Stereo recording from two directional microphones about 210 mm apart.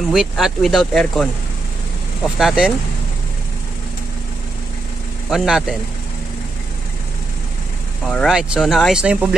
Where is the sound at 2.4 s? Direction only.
Centre (ahead or behind).